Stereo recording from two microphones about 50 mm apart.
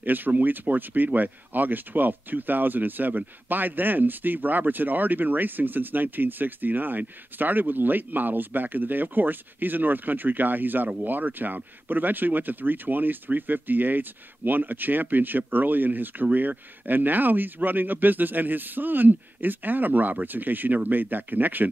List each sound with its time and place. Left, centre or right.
0.0 s speech: right